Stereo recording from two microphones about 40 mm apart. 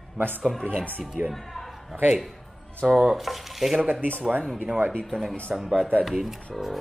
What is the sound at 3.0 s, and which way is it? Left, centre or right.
Speech, centre.